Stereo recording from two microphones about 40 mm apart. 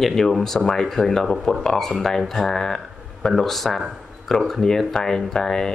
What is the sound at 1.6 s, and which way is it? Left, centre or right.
Speech, centre.